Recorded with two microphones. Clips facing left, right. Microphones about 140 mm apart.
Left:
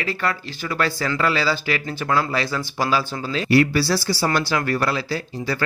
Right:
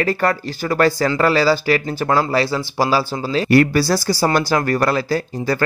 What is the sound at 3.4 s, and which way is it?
Speech, 50° right (ahead or behind).